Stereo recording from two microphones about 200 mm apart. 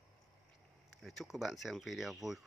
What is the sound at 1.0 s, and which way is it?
Speech, centre (ahead or behind).